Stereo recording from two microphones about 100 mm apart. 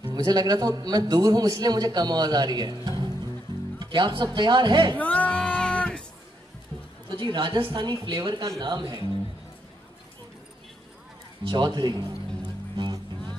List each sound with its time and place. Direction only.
0.0 s a man's voice: 45° right (ahead or behind)
3.8 s a man's voice: 50° right (ahead or behind)
4.9 s music: 15° left (ahead or behind)
7.2 s a man's voice: 50° right (ahead or behind)
11.4 s a man's voice: 50° right (ahead or behind)
12.7 s music: 50° right (ahead or behind)